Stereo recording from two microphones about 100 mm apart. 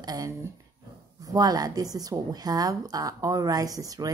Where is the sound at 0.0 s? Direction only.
40° right (ahead or behind).